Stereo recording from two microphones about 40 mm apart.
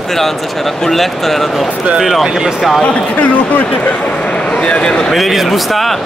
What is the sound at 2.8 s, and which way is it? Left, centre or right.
Speech, left.